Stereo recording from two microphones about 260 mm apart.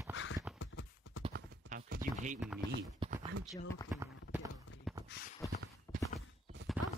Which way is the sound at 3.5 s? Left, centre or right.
Centre.